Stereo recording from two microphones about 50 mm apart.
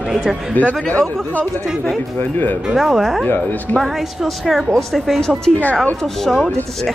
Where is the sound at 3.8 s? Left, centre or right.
Centre.